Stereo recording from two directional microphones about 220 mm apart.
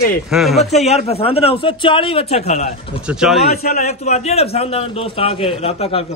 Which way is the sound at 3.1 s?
Centre (ahead or behind).